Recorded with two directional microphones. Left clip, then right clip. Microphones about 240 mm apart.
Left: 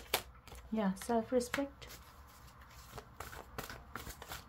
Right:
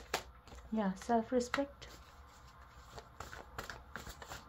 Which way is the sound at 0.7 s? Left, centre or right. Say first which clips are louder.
Right 1 dB; centre.